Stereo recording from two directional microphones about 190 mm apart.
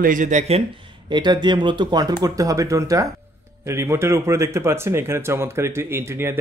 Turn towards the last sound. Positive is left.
turn(degrees=-15)  # may be behind; listen again after turning